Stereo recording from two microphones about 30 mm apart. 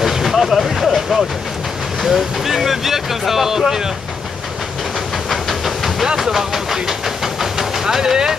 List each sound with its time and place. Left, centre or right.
0.0 s vehicle: centre
2.0 s speech: centre
2.5 s speech: centre
5.3 s steam: centre
6.1 s speech: centre
7.5 s vehicle: centre